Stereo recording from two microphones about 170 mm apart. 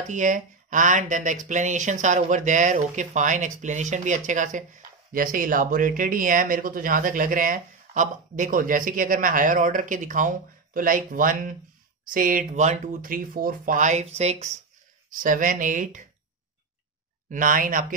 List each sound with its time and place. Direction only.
0.1 s speech: 50° right (ahead or behind)
15.0 s speech: 50° right (ahead or behind)
17.3 s speech: 50° right (ahead or behind)